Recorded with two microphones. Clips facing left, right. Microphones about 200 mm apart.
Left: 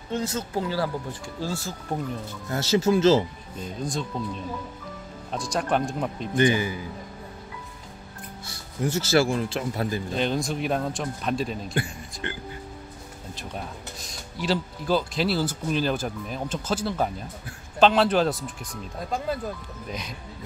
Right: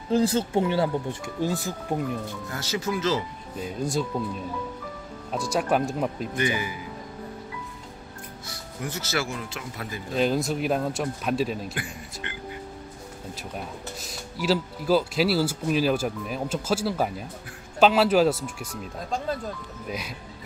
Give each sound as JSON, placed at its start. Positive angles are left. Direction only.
{"t": 0.1, "sound": "speech", "side_deg": -30}
{"t": 2.5, "sound": "speech", "side_deg": 25}
{"t": 3.6, "sound": "speech", "side_deg": -10}
{"t": 5.3, "sound": "speech", "side_deg": -5}
{"t": 6.3, "sound": "speech", "side_deg": 30}
{"t": 8.8, "sound": "speech", "side_deg": 30}
{"t": 10.1, "sound": "speech", "side_deg": -5}
{"t": 11.7, "sound": "speech", "side_deg": 30}
{"t": 13.9, "sound": "speech", "side_deg": -5}
{"t": 19.0, "sound": "speech", "side_deg": 5}
{"t": 19.9, "sound": "speech", "side_deg": -5}